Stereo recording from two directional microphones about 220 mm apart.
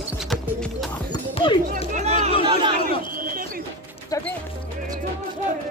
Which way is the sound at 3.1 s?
40° right (ahead or behind).